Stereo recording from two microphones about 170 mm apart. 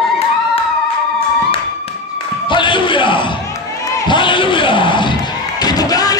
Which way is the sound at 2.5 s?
30° left (ahead or behind).